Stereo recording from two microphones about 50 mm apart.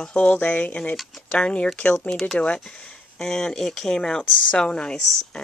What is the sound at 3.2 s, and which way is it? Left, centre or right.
Speech, centre.